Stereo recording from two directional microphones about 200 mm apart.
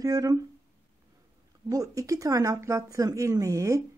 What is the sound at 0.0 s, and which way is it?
Speech, 15° right (ahead or behind).